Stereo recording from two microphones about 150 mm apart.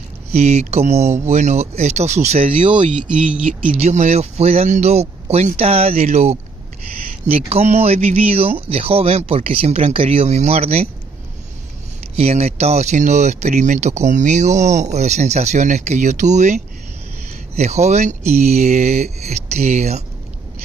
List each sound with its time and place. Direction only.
0.3 s speech: 45° right (ahead or behind)
3.3 s speech: 10° right (ahead or behind)
3.8 s speech: 50° right (ahead or behind)
12.2 s speech: 45° right (ahead or behind)